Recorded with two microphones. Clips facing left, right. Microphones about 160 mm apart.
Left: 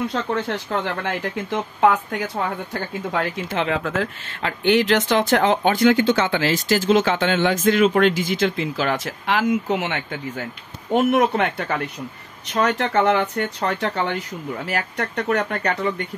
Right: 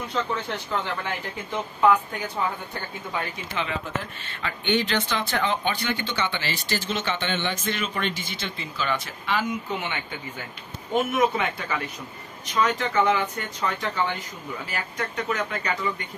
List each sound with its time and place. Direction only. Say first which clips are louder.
1.0 s speech: left 6 dB; 80° left; by 15.9 s 65° left (ahead or behind)